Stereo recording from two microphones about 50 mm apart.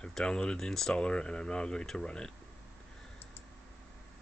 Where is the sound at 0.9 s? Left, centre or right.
Centre.